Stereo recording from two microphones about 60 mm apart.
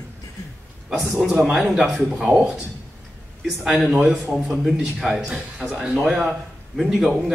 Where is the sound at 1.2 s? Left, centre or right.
Centre.